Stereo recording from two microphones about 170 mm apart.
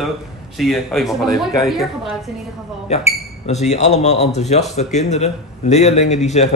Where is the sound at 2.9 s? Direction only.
40° left (ahead or behind).